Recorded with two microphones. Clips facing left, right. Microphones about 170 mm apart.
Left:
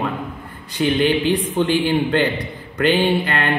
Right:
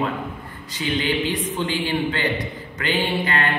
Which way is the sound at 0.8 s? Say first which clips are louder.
Left 6 dB; 55° left (ahead or behind).